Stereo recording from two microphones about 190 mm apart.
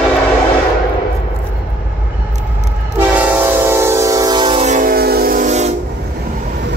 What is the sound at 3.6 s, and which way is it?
Train, 15° right (ahead or behind).